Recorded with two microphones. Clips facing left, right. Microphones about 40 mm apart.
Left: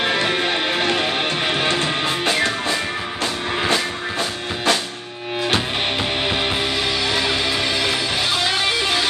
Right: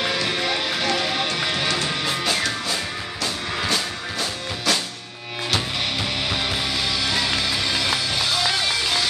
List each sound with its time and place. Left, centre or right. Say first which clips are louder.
0.0 s music: left 4 dB; left
6.2 s music: left 4 dB; left